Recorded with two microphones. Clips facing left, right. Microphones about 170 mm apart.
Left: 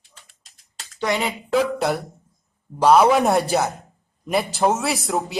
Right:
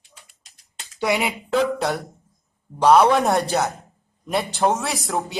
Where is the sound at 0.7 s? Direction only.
10° right (ahead or behind).